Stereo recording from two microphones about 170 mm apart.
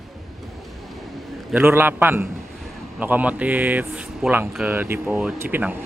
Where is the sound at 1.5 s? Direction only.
10° right (ahead or behind).